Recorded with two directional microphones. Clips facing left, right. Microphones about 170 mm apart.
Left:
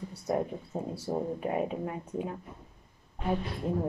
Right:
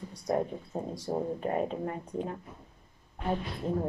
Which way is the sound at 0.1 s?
5° left (ahead or behind).